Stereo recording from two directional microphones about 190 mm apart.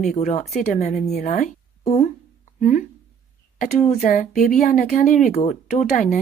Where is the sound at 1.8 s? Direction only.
35° left (ahead or behind).